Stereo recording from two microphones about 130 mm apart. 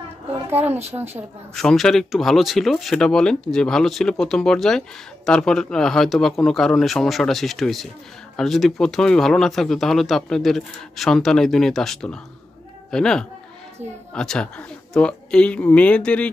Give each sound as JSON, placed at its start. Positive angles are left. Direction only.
{"t": 0.5, "sound": "a woman's voice", "side_deg": -15}
{"t": 1.5, "sound": "speech", "side_deg": 5}